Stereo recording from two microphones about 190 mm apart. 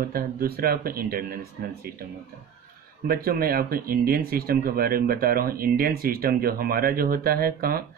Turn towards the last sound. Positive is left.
turn(degrees=-50)  # may be behind; listen again after turning